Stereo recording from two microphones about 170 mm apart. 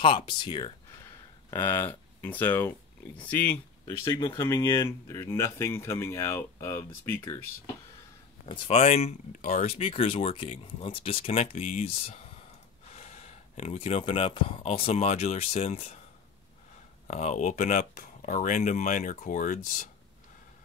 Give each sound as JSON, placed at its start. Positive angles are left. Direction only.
{"t": 0.0, "sound": "speech", "side_deg": 30}
{"t": 1.5, "sound": "speech", "side_deg": 15}
{"t": 8.5, "sound": "speech", "side_deg": 35}
{"t": 17.1, "sound": "speech", "side_deg": 45}